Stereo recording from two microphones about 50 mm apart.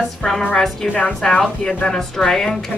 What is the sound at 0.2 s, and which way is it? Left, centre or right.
Speech, centre.